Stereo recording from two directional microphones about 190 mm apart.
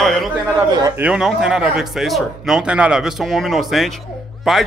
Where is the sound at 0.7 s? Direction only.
20° right (ahead or behind).